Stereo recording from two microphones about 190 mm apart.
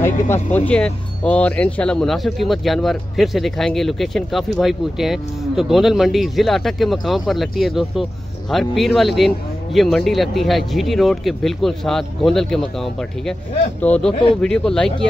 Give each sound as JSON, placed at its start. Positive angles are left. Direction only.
{"t": 0.0, "sound": "speech", "side_deg": 15}